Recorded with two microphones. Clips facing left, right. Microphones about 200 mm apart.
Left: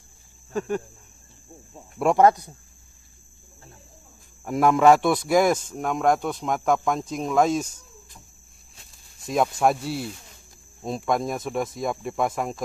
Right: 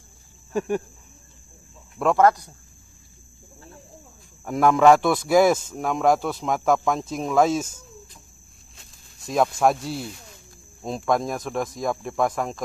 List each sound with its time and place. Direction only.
0.5 s cricket: 10° right (ahead or behind)
2.0 s speech: 15° left (ahead or behind)
4.5 s speech: centre (ahead or behind)
9.3 s speech: centre (ahead or behind)